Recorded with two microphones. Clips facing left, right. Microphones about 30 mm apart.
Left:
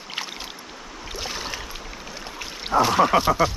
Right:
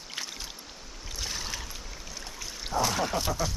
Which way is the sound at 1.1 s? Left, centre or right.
Left.